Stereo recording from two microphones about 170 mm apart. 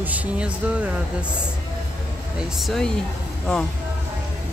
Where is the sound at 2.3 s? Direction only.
Centre (ahead or behind).